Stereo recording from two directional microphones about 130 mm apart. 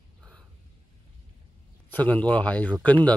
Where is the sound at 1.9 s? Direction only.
10° left (ahead or behind).